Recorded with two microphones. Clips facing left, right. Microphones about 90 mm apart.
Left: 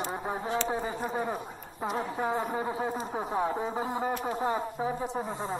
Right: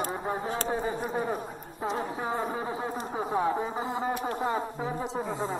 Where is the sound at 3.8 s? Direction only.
20° right (ahead or behind).